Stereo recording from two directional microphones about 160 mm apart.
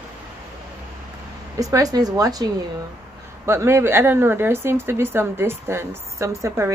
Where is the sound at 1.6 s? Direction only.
20° right (ahead or behind).